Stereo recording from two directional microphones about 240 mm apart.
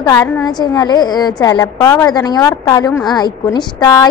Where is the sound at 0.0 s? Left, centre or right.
Centre.